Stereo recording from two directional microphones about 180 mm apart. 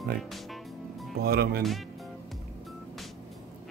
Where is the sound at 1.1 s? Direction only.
60° right (ahead or behind).